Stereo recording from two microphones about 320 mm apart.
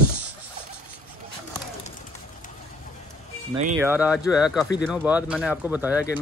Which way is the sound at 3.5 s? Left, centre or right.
Centre.